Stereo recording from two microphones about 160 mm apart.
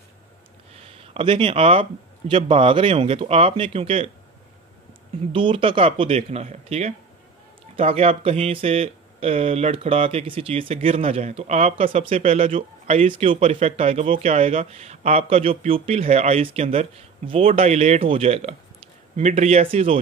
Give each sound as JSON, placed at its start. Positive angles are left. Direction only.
{"t": 0.7, "sound": "speech", "side_deg": -40}
{"t": 5.3, "sound": "speech", "side_deg": -35}